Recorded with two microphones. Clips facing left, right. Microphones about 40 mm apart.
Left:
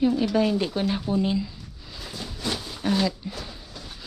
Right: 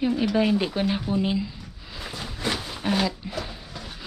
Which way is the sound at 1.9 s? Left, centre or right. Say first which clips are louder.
Right 2 dB; right.